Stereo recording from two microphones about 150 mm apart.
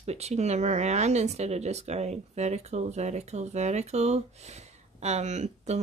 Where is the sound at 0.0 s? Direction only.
45° right (ahead or behind).